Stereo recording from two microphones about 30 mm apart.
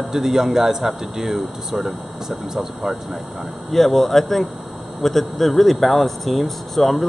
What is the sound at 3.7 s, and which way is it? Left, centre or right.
Speech, centre.